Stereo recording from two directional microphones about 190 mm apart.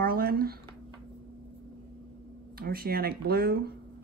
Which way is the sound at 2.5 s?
55° right (ahead or behind).